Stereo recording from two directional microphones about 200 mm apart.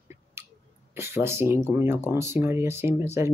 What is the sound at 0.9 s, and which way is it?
Speech, 10° right (ahead or behind).